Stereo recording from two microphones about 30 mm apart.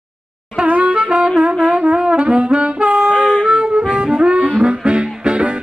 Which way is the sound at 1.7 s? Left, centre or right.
Right.